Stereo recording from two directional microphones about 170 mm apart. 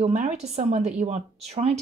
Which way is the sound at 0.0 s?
45° right (ahead or behind).